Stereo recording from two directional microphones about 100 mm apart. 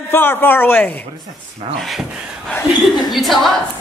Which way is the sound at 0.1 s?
20° left (ahead or behind).